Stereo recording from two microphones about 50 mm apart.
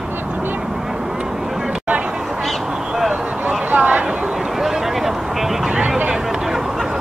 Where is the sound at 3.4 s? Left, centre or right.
Right.